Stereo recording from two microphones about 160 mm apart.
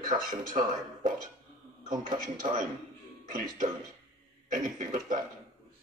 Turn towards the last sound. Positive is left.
turn(degrees=-55)  # may be behind; listen again after turning